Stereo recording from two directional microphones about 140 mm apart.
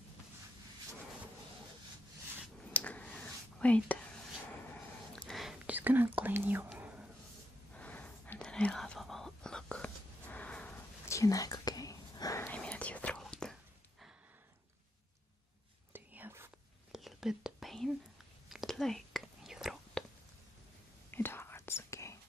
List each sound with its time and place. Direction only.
2.7 s whispering: 10° left (ahead or behind)
5.1 s whispering: 5° left (ahead or behind)
7.7 s whispering: 10° left (ahead or behind)
12.5 s whispering: 10° left (ahead or behind)
15.9 s whispering: 15° right (ahead or behind)
16.9 s whispering: 5° right (ahead or behind)
21.1 s whispering: 15° left (ahead or behind)